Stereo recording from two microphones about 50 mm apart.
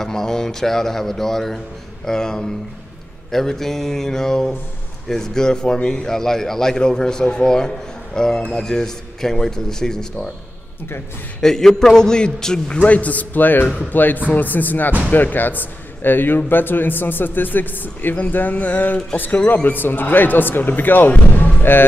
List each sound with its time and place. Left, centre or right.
0.0 s a man's voice: centre
11.4 s a man's voice: centre
12.7 s speech: left
21.4 s music: left